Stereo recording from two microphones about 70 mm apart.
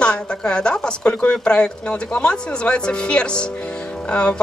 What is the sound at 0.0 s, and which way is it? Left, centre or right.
A woman's voice, centre.